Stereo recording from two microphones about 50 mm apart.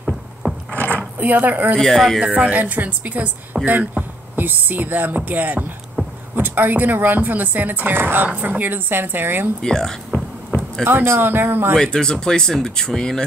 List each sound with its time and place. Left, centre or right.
0.0 s scrape: centre
0.7 s a sound: left
1.1 s speech: right
1.8 s speech: centre
2.1 s speech: right
9.6 s speech: centre
10.8 s speech: right
11.7 s speech: centre